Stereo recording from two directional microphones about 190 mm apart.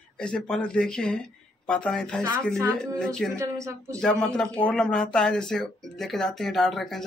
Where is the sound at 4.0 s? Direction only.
5° left (ahead or behind).